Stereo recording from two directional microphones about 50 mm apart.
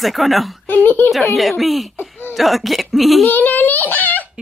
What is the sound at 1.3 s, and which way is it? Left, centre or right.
Speech, centre.